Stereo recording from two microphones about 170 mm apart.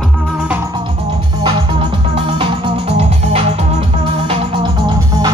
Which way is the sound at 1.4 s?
30° right (ahead or behind).